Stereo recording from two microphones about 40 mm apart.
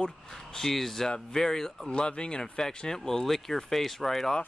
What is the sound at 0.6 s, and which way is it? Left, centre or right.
Speech, centre.